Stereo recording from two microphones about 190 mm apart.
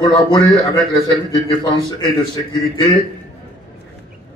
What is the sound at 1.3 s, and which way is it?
Speech, 20° left (ahead or behind).